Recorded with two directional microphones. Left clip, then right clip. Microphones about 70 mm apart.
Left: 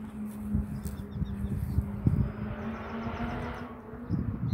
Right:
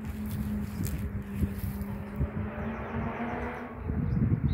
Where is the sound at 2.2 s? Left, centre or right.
Centre.